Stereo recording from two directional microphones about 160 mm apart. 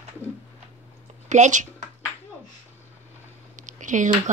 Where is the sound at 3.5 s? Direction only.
50° right (ahead or behind).